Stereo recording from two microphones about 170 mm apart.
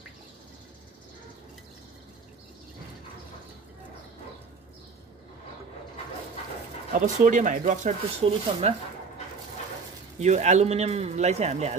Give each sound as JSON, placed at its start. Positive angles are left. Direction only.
{"t": 6.9, "sound": "speech", "side_deg": -50}
{"t": 10.2, "sound": "speech", "side_deg": -40}